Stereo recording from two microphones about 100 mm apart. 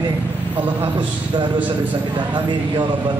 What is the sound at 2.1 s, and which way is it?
Speech, 50° right (ahead or behind).